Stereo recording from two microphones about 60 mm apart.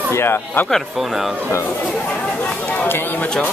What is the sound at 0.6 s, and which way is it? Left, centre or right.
Speech, centre.